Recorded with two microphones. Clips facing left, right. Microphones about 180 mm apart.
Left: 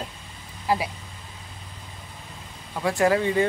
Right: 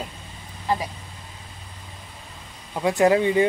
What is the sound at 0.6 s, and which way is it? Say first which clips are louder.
Speech: left 1 dB; 5° left (ahead or behind).